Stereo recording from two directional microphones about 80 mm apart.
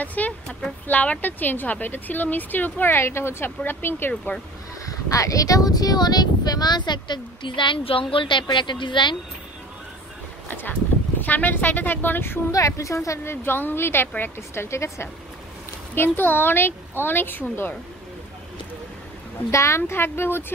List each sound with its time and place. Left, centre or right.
0.0 s speech: centre
4.8 s a woman's voice: left
10.5 s speech: left
12.4 s speech: left
19.5 s speech: left